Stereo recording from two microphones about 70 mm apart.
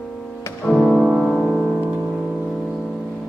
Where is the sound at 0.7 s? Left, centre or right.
Centre.